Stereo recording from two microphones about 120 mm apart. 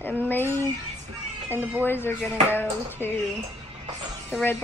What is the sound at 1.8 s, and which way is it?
A woman's voice, 20° left (ahead or behind).